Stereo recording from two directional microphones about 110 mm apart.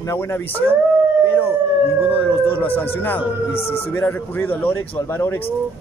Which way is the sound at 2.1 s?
20° left (ahead or behind).